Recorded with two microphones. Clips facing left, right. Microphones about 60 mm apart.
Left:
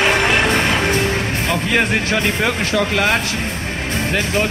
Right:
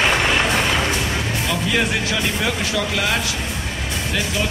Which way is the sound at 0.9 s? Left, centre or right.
Left.